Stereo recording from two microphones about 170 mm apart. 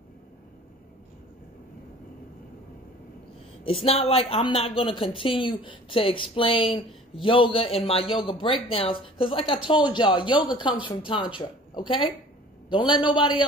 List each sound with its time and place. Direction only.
3.6 s speech: 35° left (ahead or behind)